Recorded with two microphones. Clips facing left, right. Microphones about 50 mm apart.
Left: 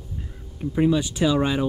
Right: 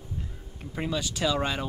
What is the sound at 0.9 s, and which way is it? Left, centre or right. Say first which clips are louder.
Speech: left 5 dB; left.